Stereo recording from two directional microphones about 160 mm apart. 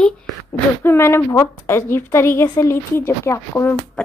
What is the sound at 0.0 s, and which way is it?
A woman's voice, 15° left (ahead or behind).